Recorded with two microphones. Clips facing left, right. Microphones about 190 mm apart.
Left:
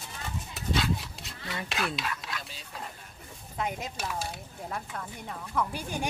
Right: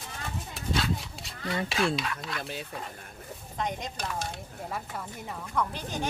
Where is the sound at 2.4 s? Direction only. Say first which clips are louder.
Right 9 dB; 60° right (ahead or behind).